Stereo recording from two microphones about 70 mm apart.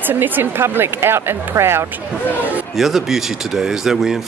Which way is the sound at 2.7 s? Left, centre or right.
Centre.